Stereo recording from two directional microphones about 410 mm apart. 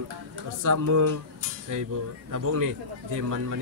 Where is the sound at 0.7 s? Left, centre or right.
Right.